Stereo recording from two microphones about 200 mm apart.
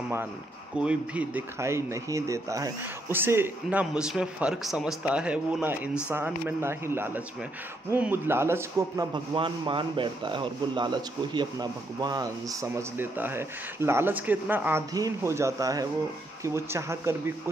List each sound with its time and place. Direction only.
0.7 s a man's voice: 5° right (ahead or behind)